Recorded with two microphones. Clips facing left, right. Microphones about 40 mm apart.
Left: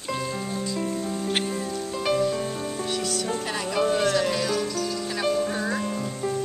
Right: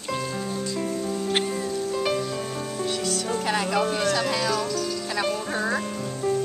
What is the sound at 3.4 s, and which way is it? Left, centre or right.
Music, right.